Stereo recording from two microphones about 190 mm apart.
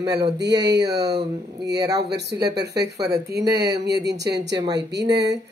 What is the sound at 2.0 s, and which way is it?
Speech, 60° right (ahead or behind).